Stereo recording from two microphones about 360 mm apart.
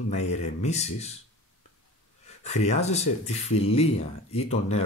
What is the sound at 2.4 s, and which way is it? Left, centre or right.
Speech, centre.